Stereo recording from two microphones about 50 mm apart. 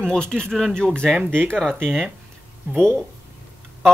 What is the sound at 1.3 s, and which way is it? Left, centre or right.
Speech, centre.